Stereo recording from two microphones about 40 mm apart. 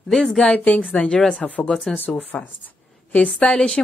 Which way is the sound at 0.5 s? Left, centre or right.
Left.